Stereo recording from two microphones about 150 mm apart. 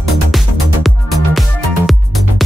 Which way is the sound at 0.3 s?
Centre (ahead or behind).